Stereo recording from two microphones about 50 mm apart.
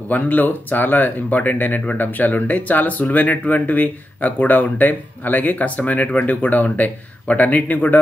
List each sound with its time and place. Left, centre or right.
0.1 s speech: left